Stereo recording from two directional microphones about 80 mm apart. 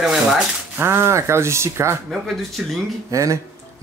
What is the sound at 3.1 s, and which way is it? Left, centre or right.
Speech, right.